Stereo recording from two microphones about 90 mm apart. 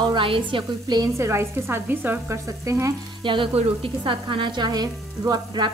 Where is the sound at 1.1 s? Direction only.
30° right (ahead or behind).